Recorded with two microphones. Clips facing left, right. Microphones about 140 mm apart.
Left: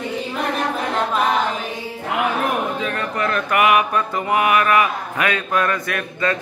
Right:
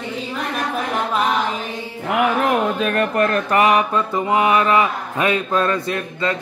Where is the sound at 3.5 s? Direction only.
35° right (ahead or behind).